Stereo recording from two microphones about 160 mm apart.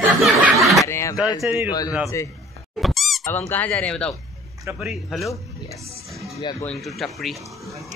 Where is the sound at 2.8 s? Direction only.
Centre (ahead or behind).